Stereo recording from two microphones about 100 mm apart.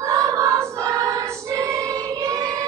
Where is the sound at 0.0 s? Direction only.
30° right (ahead or behind).